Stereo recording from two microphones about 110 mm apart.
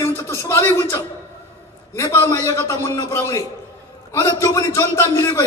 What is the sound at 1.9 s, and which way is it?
A man's voice, 25° left (ahead or behind).